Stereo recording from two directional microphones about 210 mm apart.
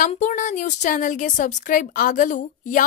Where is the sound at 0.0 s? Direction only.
35° left (ahead or behind).